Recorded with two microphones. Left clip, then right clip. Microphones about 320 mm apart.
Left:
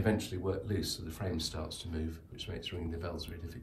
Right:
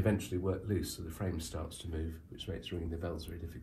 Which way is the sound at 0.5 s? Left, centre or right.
Centre.